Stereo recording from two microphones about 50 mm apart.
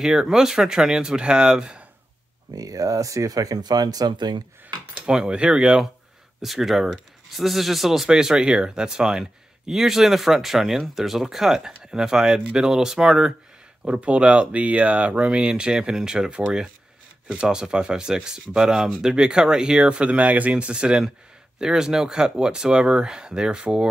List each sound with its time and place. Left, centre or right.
0.0 s speech: centre
3.2 s speech: right
5.0 s speech: centre
6.4 s speech: centre
13.8 s speech: right